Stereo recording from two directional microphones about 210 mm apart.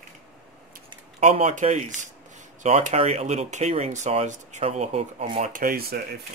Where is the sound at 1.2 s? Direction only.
35° right (ahead or behind).